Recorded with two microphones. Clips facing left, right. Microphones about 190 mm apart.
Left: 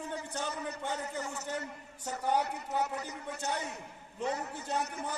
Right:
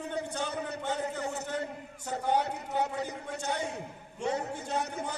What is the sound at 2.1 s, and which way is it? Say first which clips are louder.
A man's voice: right 2 dB; 60° right (ahead or behind).